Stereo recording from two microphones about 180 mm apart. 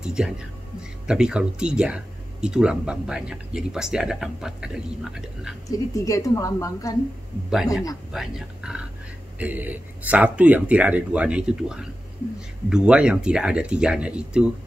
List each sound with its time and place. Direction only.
0.0 s speech: 5° right (ahead or behind)
5.7 s a woman's voice: 20° left (ahead or behind)
7.5 s speech: centre (ahead or behind)